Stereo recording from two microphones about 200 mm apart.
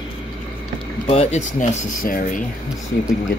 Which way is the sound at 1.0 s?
30° left (ahead or behind).